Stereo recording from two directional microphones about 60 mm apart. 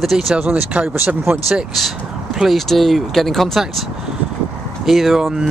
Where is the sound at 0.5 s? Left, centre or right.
Right.